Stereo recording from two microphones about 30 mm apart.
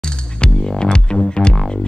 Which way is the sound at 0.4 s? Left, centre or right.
Left.